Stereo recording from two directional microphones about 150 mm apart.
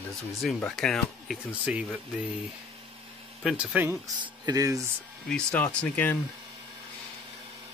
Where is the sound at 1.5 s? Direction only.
10° right (ahead or behind).